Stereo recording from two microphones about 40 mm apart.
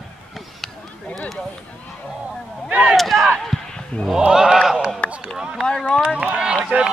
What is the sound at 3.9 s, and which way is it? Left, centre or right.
Speech, left.